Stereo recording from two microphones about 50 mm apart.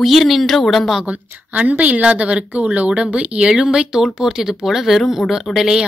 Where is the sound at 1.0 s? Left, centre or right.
Right; by 5.3 s centre.